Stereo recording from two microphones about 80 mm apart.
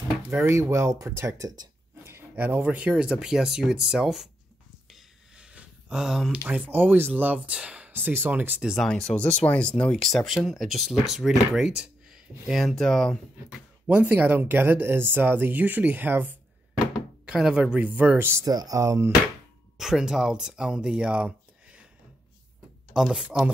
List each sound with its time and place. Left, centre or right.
0.3 s speech: right
2.0 s speech: right; by 4.3 s centre
4.8 s a sound: centre
6.3 s speech: right
7.9 s speech: right
8.7 s speech: centre
9.9 s speech: centre
13.8 s speech: centre
17.3 s speech: centre; by 18.4 s right
18.4 s speech: right
19.8 s speech: centre
22.9 s speech: centre